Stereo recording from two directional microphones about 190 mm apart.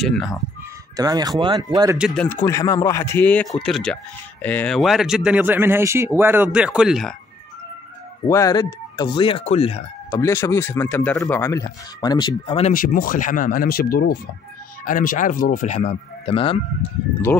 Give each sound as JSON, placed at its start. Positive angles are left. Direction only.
{"t": 0.0, "sound": "speech", "side_deg": 0}
{"t": 0.9, "sound": "speech", "side_deg": -20}
{"t": 2.0, "sound": "speech", "side_deg": -5}
{"t": 2.2, "sound": "speech", "side_deg": 15}
{"t": 8.3, "sound": "speech", "side_deg": 15}
{"t": 10.1, "sound": "speech", "side_deg": 15}
{"t": 12.7, "sound": "speech", "side_deg": 50}
{"t": 17.3, "sound": "speech", "side_deg": 10}